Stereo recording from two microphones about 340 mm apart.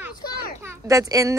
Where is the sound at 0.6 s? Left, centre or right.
Centre.